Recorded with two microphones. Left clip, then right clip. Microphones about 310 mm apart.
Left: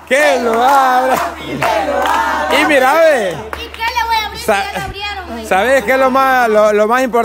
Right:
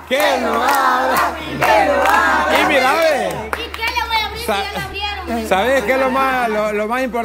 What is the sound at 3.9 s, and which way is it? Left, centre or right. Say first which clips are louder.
Children playing: left 4 dB; centre.